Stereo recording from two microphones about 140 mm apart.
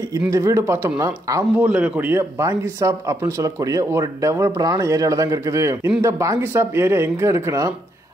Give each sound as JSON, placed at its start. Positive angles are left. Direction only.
{"t": 0.3, "sound": "speech", "side_deg": -25}
{"t": 1.6, "sound": "speech", "side_deg": -10}